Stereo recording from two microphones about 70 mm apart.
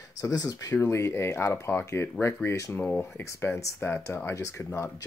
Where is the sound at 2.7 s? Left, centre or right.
Centre.